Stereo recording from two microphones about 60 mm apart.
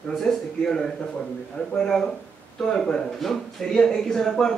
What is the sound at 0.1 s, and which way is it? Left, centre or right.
Speech, centre.